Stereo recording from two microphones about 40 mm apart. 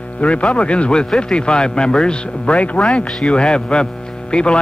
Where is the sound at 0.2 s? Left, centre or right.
Left.